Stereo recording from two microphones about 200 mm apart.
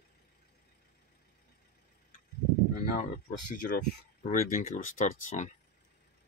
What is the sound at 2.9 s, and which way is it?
Speech, 40° left (ahead or behind).